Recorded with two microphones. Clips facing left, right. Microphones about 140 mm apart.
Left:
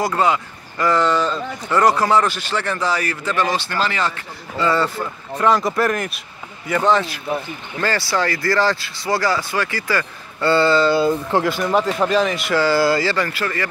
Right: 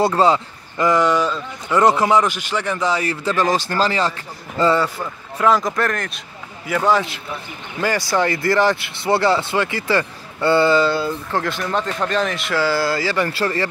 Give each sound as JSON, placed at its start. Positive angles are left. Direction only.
{"t": 0.0, "sound": "speech", "side_deg": -30}
{"t": 0.8, "sound": "a sound", "side_deg": -15}
{"t": 1.7, "sound": "speech", "side_deg": -20}
{"t": 4.7, "sound": "speech", "side_deg": -5}
{"t": 6.7, "sound": "a sound", "side_deg": -10}
{"t": 7.8, "sound": "speech", "side_deg": -15}
{"t": 11.0, "sound": "speech", "side_deg": 15}
{"t": 11.4, "sound": "speech", "side_deg": 5}
{"t": 13.3, "sound": "speech", "side_deg": -30}